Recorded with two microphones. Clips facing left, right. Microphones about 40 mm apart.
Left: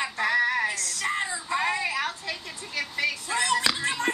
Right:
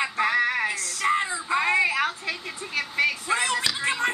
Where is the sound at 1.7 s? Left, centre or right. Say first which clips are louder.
Right 5 dB; centre.